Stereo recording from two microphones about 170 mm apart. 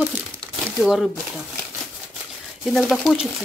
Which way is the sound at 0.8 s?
Centre (ahead or behind).